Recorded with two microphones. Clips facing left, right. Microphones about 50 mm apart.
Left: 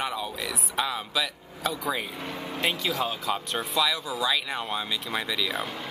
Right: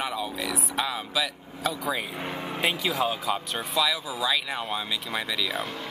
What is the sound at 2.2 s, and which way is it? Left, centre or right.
Speech, right.